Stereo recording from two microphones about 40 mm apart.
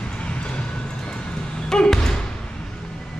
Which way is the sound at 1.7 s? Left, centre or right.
Centre.